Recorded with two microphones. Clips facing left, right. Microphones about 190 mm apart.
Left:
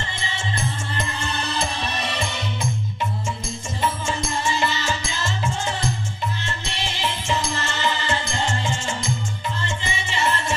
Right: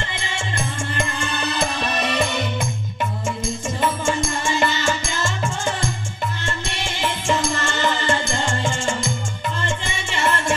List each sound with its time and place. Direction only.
0.9 s music: 50° right (ahead or behind)
3.8 s music: 55° right (ahead or behind)
6.4 s music: 55° right (ahead or behind)